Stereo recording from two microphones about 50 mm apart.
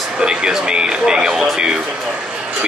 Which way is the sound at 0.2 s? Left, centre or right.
Centre.